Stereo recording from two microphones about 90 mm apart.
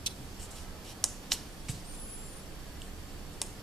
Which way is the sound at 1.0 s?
Centre (ahead or behind).